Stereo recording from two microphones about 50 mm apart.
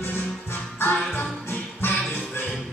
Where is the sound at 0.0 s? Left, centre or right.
Left.